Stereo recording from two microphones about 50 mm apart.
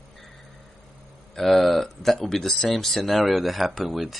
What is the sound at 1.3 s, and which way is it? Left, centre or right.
Speech, centre.